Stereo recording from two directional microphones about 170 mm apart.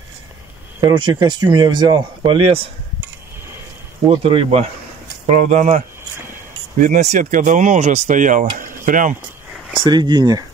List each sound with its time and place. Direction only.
0.7 s speech: 25° right (ahead or behind)
4.2 s speech: 35° right (ahead or behind)
6.8 s speech: 45° right (ahead or behind)
9.8 s speech: 25° right (ahead or behind)